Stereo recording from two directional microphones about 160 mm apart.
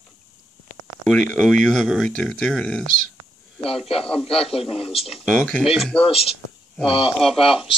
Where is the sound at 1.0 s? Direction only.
5° left (ahead or behind).